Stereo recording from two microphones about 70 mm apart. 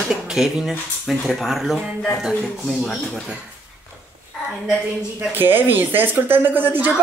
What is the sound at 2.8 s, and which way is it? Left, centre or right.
Speech, centre.